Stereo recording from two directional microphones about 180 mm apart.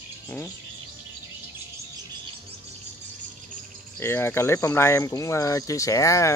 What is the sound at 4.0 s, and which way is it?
Speech, 15° left (ahead or behind).